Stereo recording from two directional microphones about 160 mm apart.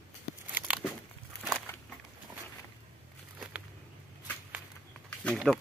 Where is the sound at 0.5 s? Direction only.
5° right (ahead or behind).